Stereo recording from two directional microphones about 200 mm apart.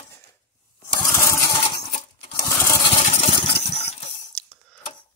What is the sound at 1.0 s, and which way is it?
Engine, 15° left (ahead or behind).